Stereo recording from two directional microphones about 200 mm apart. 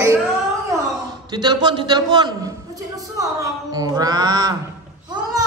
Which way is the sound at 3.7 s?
20° right (ahead or behind).